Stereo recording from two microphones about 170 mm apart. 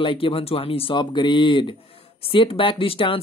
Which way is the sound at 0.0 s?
30° left (ahead or behind).